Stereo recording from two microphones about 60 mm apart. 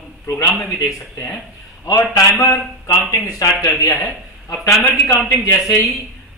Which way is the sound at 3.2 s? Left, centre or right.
Left.